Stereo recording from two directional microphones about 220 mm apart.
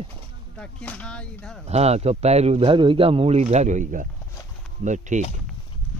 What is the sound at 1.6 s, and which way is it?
Speech, 30° right (ahead or behind).